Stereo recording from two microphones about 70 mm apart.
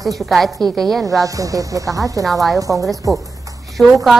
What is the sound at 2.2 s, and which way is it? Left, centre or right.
A woman's voice, centre.